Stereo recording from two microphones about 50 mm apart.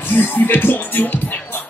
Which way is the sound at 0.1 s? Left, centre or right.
Left.